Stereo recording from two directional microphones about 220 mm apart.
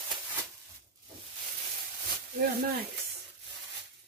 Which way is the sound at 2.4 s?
45° right (ahead or behind).